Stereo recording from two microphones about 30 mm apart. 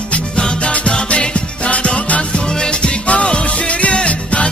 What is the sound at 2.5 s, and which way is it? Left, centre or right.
Music, left.